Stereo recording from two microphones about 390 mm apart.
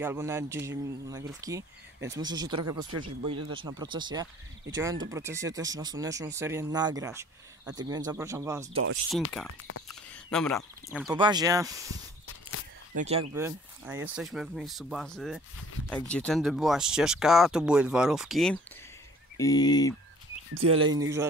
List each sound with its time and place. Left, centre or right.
0.0 s speech: centre
9.5 s speech: left
9.8 s speech: centre
12.3 s a sound: left
12.9 s speech: centre
20.5 s speech: right